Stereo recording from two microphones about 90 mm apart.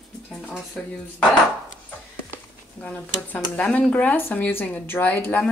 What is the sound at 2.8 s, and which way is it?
Speech, 15° left (ahead or behind).